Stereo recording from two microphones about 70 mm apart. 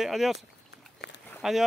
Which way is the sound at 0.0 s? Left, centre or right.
Centre.